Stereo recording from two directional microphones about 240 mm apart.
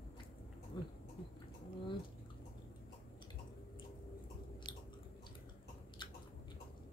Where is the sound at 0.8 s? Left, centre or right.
Centre.